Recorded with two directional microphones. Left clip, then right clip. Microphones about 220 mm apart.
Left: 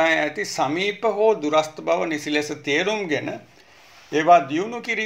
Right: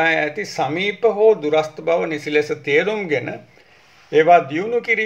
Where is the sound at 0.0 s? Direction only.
25° left (ahead or behind).